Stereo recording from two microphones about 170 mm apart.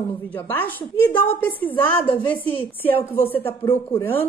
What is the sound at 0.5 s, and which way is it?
A woman's voice, 10° left (ahead or behind).